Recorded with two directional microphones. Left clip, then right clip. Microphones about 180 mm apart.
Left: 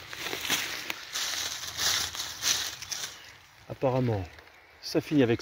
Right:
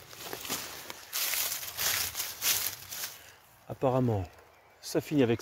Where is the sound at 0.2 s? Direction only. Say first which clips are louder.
Left 8 dB; 15° left (ahead or behind).